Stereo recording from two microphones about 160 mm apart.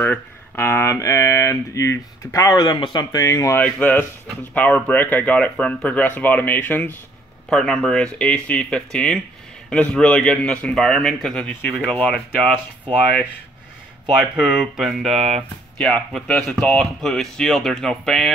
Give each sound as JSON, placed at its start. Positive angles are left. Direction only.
{"t": 0.0, "sound": "speech", "side_deg": 10}
{"t": 14.3, "sound": "speech", "side_deg": -5}